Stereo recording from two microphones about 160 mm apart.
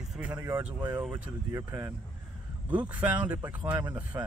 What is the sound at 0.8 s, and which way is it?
Speech, 25° right (ahead or behind).